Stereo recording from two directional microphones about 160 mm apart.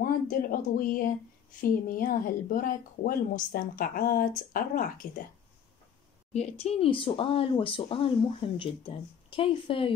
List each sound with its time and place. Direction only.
0.0 s speech: 60° left (ahead or behind)
6.3 s speech: 40° left (ahead or behind)